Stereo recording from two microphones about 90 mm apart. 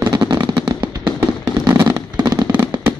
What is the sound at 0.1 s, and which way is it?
Fireworks, 50° right (ahead or behind).